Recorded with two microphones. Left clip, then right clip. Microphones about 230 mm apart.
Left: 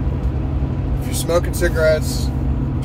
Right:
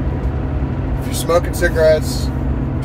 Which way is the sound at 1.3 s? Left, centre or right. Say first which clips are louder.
Right 3 dB; centre.